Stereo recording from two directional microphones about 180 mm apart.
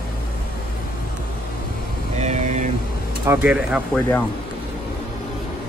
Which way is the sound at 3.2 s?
10° right (ahead or behind).